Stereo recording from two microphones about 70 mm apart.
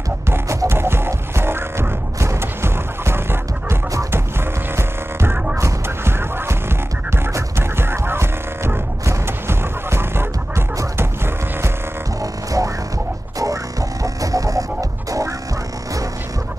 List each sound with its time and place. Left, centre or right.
0.7 s music: right
4.7 s music: right
12.2 s hum: right
13.4 s music: right